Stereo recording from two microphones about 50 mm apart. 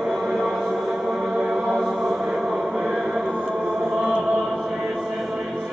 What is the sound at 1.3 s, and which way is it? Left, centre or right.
Music, centre.